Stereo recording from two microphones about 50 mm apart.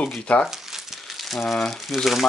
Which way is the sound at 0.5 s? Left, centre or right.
Centre.